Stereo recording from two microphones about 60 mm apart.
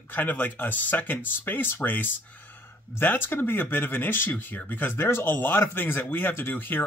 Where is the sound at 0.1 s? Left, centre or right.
Left.